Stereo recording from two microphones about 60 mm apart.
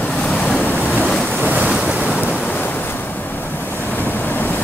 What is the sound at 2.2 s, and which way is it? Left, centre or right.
Waves, left.